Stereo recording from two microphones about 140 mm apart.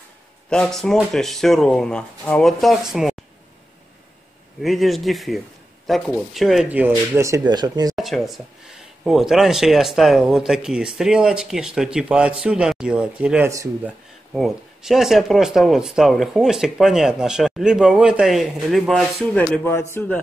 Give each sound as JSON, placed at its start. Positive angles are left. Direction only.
{"t": 0.5, "sound": "speech", "side_deg": 5}
{"t": 4.6, "sound": "speech", "side_deg": 0}
{"t": 7.2, "sound": "speech", "side_deg": -25}
{"t": 7.9, "sound": "speech", "side_deg": 0}